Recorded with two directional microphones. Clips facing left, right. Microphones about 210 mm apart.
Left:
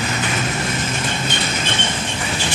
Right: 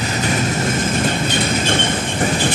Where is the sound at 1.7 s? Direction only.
50° right (ahead or behind).